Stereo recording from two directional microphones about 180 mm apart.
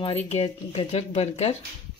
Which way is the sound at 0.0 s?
35° left (ahead or behind).